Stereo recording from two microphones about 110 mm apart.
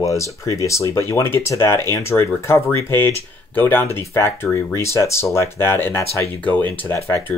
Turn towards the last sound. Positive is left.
turn(degrees=20)  # may be behind; listen again after turning